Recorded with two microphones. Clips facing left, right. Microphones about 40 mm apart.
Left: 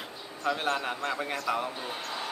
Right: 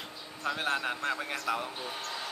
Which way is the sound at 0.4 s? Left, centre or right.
Centre.